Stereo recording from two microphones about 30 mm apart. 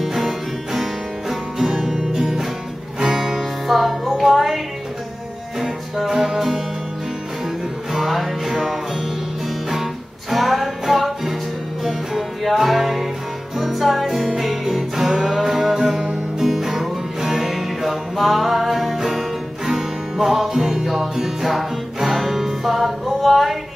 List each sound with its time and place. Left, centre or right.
0.0 s music: centre
1.6 s music: centre
3.3 s music: centre
5.6 s music: centre
7.9 s music: centre
10.3 s music: centre
20.8 s music: centre
23.2 s a sound: centre